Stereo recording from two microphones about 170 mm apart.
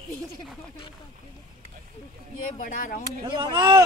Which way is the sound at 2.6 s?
50° left (ahead or behind).